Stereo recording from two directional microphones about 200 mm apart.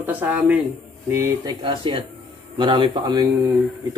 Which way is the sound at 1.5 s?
25° right (ahead or behind).